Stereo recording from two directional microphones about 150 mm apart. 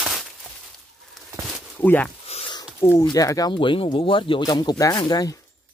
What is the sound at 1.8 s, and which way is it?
Speech, 10° left (ahead or behind).